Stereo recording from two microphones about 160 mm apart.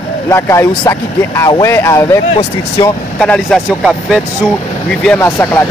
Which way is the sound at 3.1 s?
5° left (ahead or behind).